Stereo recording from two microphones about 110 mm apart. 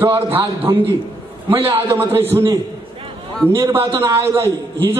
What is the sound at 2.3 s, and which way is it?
A man's voice, 30° right (ahead or behind).